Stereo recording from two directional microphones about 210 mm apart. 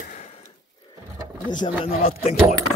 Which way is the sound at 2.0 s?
30° left (ahead or behind).